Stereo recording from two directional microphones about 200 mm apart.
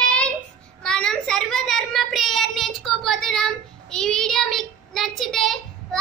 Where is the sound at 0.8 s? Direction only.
5° left (ahead or behind).